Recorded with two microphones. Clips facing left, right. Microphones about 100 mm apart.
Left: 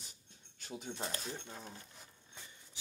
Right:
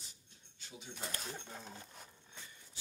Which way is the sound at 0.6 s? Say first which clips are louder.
Left 7 dB; 55° left (ahead or behind).